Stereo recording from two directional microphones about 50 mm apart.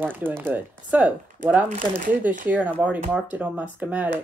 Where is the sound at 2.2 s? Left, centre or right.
Right.